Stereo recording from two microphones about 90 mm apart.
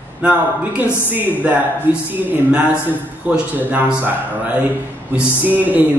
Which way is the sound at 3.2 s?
15° right (ahead or behind).